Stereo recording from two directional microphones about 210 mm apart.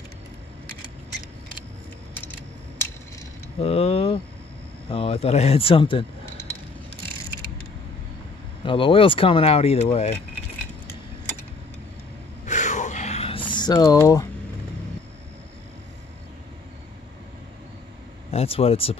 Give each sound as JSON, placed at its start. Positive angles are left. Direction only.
{"t": 3.6, "sound": "speech", "side_deg": 30}
{"t": 8.6, "sound": "speech", "side_deg": 25}
{"t": 12.4, "sound": "a sound", "side_deg": 35}
{"t": 18.3, "sound": "speech", "side_deg": 30}